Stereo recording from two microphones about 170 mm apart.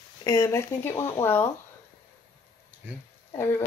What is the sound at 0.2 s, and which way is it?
Speech, 20° left (ahead or behind).